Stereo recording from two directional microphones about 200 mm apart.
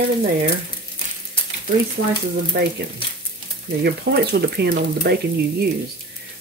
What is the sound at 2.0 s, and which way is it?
Speech, 70° right (ahead or behind).